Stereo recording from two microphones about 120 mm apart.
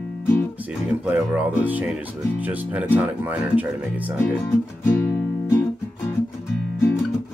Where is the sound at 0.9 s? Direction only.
10° right (ahead or behind).